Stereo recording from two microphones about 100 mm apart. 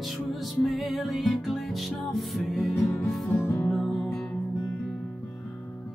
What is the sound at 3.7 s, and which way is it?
Music, centre (ahead or behind).